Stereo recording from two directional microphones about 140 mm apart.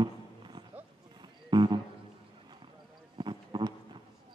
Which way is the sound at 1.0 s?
30° right (ahead or behind).